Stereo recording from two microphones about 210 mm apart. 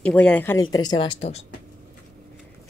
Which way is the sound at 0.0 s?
5° left (ahead or behind).